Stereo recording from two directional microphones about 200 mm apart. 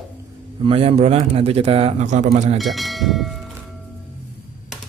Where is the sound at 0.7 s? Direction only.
30° right (ahead or behind).